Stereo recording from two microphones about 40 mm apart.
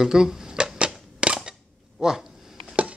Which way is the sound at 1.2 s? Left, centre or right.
Right.